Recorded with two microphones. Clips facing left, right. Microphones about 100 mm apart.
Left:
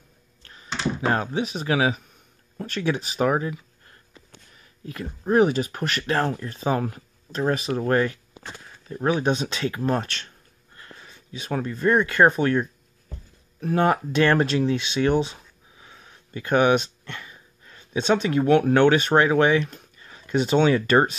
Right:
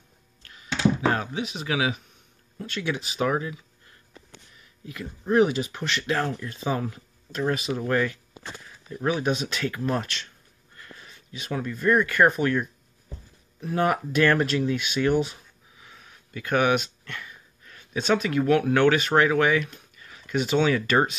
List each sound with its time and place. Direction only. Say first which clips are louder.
0.4 s a sound: left 2 dB; 35° left (ahead or behind)
1.1 s speech: left 4 dB; 35° left (ahead or behind)
4.8 s speech: left 2 dB; 40° left (ahead or behind)
11.3 s speech: left 3 dB; 35° left (ahead or behind)
13.7 s speech: left 2 dB; 30° left (ahead or behind)
15.8 s a sound: left 1 dB; 30° left (ahead or behind)
20.6 s speech: left 3 dB; 35° left (ahead or behind)